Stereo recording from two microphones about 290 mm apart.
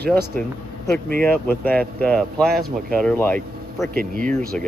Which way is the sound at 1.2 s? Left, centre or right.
Centre.